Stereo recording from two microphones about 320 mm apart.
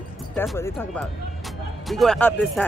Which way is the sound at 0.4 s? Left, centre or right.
Centre.